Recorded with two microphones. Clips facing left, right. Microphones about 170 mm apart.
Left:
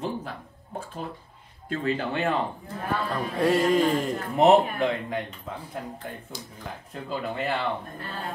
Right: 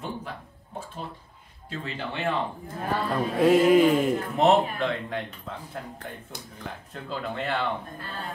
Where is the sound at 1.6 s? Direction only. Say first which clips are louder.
Left 7 dB; 50° left (ahead or behind).